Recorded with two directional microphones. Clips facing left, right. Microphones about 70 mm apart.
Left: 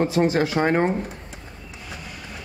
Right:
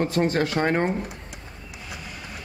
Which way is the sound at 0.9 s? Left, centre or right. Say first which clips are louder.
Left 2 dB; centre.